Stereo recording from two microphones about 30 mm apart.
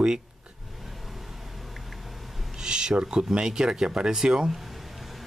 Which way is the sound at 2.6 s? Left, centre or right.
Right.